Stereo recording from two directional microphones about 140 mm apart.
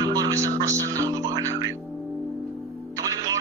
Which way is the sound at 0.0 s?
25° right (ahead or behind).